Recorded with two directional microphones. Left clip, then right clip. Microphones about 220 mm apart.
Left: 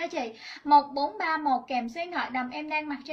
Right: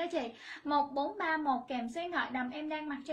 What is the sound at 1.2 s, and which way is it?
A woman's voice, centre (ahead or behind).